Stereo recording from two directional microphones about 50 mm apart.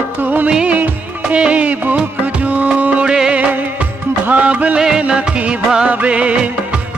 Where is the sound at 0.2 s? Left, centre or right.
Right.